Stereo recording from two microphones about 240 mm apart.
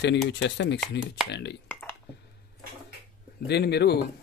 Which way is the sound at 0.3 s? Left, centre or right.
Left.